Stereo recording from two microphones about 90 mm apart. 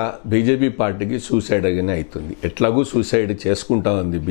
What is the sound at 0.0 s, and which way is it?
Speech, 15° left (ahead or behind).